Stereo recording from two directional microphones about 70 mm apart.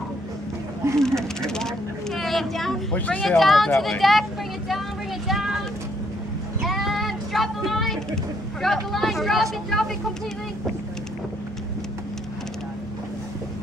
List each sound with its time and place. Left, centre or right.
0.9 s vehicle: centre
2.9 s speech: centre
3.3 s speech: centre
6.6 s a sound: centre
8.6 s speech: centre